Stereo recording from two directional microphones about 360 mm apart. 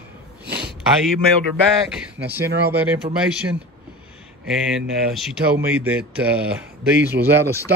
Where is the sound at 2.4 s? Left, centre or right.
Right.